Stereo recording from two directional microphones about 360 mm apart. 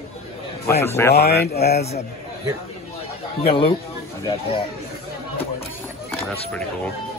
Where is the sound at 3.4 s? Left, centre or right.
Centre.